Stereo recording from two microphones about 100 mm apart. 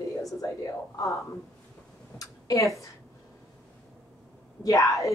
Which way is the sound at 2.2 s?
35° left (ahead or behind).